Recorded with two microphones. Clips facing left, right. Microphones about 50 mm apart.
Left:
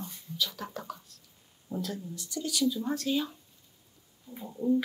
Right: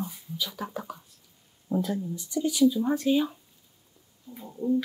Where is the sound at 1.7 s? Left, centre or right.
Right.